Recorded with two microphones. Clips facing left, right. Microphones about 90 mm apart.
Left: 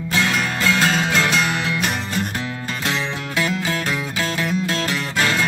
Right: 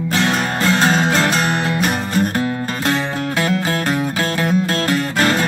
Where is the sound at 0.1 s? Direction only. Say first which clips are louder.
Right 2 dB; 40° right (ahead or behind).